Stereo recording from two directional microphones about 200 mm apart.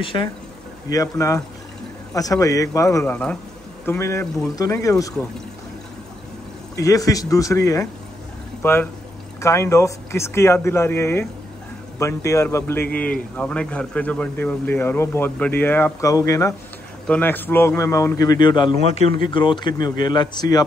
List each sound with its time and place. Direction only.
0.0 s speech: 25° left (ahead or behind)
6.8 s speech: 15° left (ahead or behind)